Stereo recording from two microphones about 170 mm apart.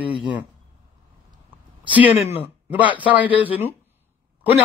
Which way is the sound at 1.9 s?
10° right (ahead or behind).